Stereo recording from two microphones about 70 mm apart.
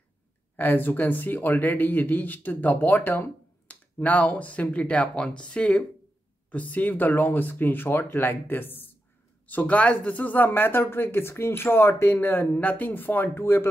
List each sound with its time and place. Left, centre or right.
0.6 s speech: left